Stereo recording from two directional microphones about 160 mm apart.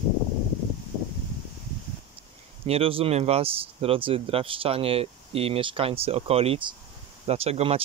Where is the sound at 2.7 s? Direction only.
35° right (ahead or behind).